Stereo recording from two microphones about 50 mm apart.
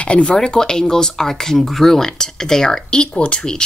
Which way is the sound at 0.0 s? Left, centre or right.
Left.